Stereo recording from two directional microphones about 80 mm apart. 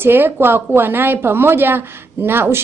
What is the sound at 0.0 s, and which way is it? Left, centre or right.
A woman's voice, right.